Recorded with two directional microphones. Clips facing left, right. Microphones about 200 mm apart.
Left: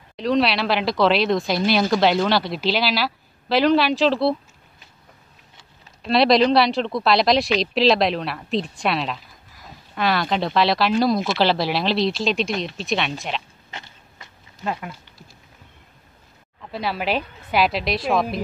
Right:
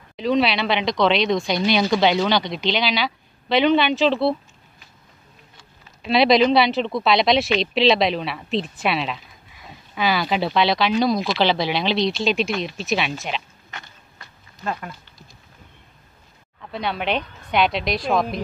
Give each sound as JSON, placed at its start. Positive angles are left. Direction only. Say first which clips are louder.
{"t": 0.1, "sound": "speech", "louder": "even", "side_deg": 0}
{"t": 6.0, "sound": "speech", "louder": "even", "side_deg": 0}
{"t": 13.7, "sound": "biting", "louder": "left 1 dB", "side_deg": 25}
{"t": 14.6, "sound": "speech", "louder": "left 1 dB", "side_deg": 10}
{"t": 16.6, "sound": "speech", "louder": "even", "side_deg": 0}